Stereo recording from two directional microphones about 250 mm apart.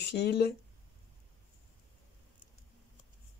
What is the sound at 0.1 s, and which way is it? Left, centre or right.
Speech, left.